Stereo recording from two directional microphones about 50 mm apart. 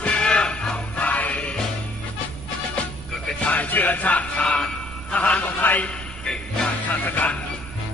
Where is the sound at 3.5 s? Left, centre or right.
Left.